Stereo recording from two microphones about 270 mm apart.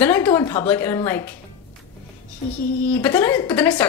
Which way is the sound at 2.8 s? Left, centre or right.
Centre.